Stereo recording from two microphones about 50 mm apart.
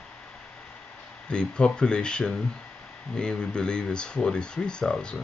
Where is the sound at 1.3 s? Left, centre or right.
Centre.